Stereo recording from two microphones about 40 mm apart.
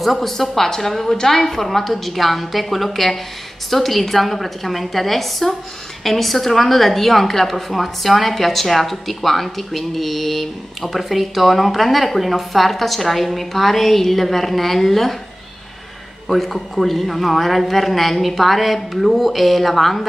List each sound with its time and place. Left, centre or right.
0.0 s a woman's voice: centre
16.3 s a woman's voice: centre